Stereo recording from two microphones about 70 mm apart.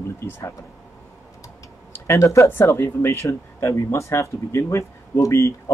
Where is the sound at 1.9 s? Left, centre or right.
Left.